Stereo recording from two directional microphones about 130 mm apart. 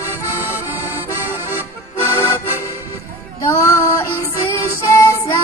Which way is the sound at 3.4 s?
25° left (ahead or behind).